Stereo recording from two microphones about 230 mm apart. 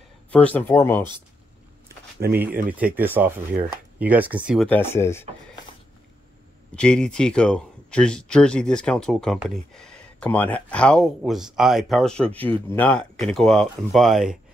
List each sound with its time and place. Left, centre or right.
0.3 s speech: centre
2.1 s speech: right
2.8 s speech: centre
4.6 s speech: centre
6.7 s speech: centre